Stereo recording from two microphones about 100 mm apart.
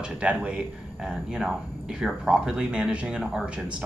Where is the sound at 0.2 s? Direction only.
15° right (ahead or behind).